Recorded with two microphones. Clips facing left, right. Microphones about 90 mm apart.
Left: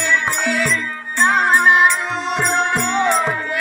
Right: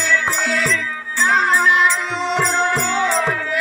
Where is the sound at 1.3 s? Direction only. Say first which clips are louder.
Even; 30° left (ahead or behind).